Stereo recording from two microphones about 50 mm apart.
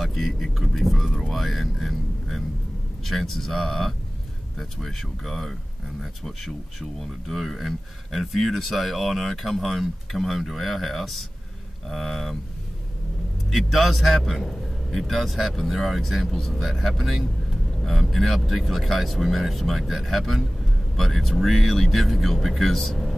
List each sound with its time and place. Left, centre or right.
0.0 s speech: centre
1.3 s a sound: centre
3.0 s speech: centre
13.5 s speech: centre